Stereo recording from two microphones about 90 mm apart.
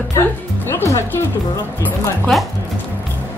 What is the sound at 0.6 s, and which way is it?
Speech, 30° left (ahead or behind).